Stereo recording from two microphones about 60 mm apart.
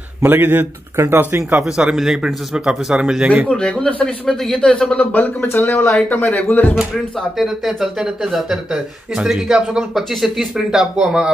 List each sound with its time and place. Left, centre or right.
0.2 s speech: right
2.0 s a man's voice: centre
3.4 s speech: centre
4.6 s speech: centre
5.1 s speech: left
7.2 s a man's voice: centre